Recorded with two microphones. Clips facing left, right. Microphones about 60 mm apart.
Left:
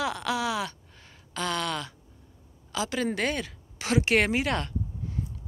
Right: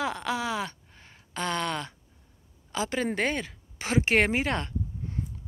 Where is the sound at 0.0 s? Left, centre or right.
Right.